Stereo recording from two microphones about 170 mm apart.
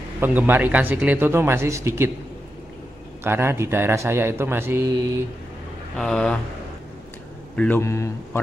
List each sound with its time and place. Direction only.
0.2 s speech: 10° right (ahead or behind)
3.3 s speech: 15° right (ahead or behind)
5.9 s speech: 5° left (ahead or behind)
7.5 s speech: 10° left (ahead or behind)